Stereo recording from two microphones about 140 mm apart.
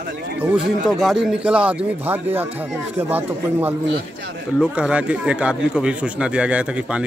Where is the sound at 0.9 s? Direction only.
Centre (ahead or behind).